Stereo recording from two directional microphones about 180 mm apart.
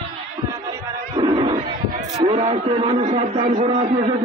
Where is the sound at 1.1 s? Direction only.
25° right (ahead or behind).